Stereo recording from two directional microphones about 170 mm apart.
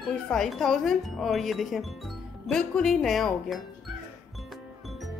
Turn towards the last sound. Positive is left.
turn(degrees=0)  # may be behind; listen again after turning